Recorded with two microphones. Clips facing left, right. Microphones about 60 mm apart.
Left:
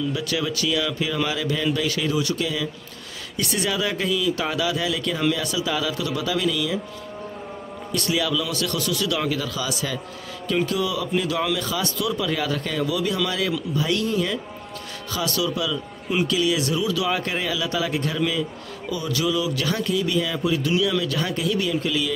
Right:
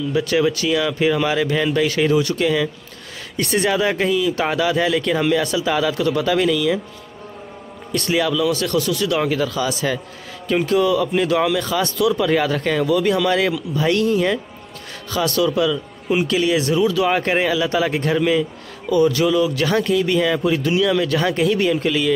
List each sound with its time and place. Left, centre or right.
0.1 s speech: right
3.3 s speech: right
7.9 s speech: right
8.5 s speech: right
12.3 s speech: right